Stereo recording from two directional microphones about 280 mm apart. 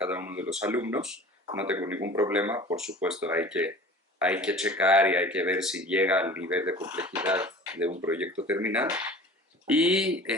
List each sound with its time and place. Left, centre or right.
0.0 s speech: centre